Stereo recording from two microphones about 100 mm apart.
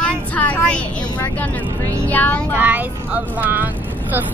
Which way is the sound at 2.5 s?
15° right (ahead or behind).